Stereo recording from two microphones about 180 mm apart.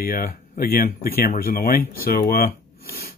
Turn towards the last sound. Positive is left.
turn(degrees=55)  # may be behind; listen again after turning